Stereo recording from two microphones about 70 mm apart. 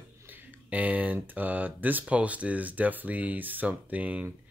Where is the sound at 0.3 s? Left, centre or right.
Right.